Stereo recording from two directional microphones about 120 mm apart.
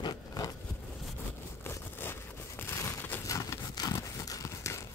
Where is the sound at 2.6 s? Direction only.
20° left (ahead or behind).